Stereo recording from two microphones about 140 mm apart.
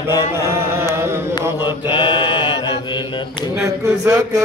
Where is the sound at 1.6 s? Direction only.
35° left (ahead or behind).